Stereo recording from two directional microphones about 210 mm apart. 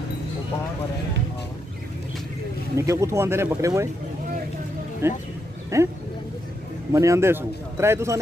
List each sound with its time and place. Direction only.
2.7 s a man's voice: 15° right (ahead or behind)
5.0 s a man's voice: 10° right (ahead or behind)
6.9 s a man's voice: 15° right (ahead or behind)